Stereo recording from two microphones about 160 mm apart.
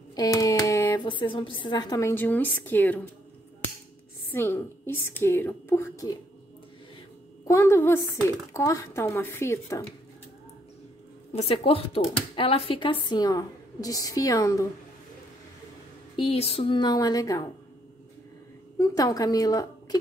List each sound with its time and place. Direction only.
0.1 s hands: 25° left (ahead or behind)
1.0 s a woman's voice: 30° left (ahead or behind); by 3.0 s 10° left (ahead or behind)
4.3 s a woman's voice: 15° left (ahead or behind)
7.4 s a woman's voice: 15° left (ahead or behind)
11.3 s a woman's voice: 35° left (ahead or behind); by 14.7 s 20° left (ahead or behind)
16.2 s a woman's voice: 35° left (ahead or behind)
18.8 s a woman's voice: 20° left (ahead or behind)